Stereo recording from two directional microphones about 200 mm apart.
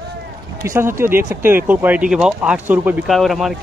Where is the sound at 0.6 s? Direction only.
15° right (ahead or behind).